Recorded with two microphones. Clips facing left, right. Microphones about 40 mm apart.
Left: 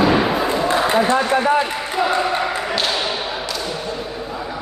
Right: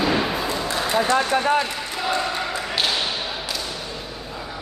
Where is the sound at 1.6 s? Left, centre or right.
Left.